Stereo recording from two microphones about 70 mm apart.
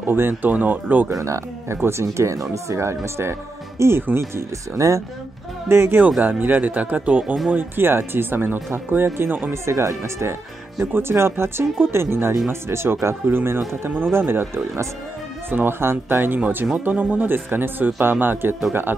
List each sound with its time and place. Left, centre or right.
0.0 s speech: right
1.1 s speech: right
4.7 s speech: right
5.7 s speech: right
9.7 s speech: right
16.8 s speech: centre